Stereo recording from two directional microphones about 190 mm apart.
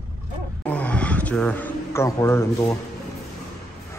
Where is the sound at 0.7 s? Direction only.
5° left (ahead or behind).